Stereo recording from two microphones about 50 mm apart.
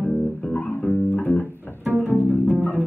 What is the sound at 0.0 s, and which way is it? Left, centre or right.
Music, left.